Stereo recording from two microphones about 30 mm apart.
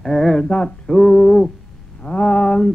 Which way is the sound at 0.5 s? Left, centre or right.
Left.